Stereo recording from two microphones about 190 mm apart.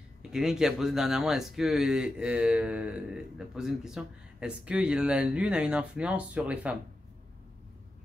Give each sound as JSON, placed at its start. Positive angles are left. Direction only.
{"t": 0.3, "sound": "speech", "side_deg": -5}